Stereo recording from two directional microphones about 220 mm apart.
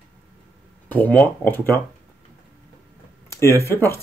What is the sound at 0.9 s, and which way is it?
Speech, 10° left (ahead or behind).